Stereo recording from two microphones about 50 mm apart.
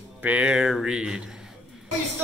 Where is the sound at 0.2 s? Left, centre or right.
Right.